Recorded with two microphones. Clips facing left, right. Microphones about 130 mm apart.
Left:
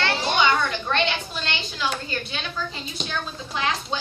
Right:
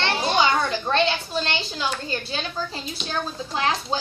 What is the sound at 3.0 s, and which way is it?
Speech, 35° right (ahead or behind).